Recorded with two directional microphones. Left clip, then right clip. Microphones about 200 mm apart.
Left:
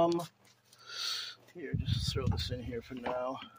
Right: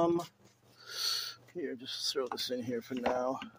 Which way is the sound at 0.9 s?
30° right (ahead or behind).